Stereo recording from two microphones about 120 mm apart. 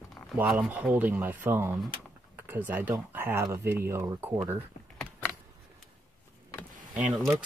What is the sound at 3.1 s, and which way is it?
Speech, 20° right (ahead or behind).